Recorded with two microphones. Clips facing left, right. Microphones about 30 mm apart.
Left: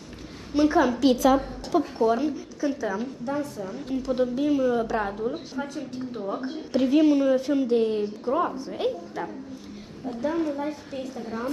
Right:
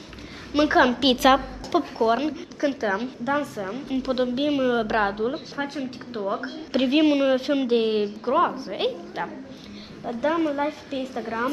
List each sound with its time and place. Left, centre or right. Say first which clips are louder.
0.5 s a woman's voice: right 2 dB; right
2.0 s a woman's voice: right 1 dB; right
3.3 s a woman's voice: right 5 dB; right
3.6 s a woman's voice: right 2 dB; right
10.0 s a woman's voice: right 3 dB; right
11.0 s a woman's voice: right 4 dB; right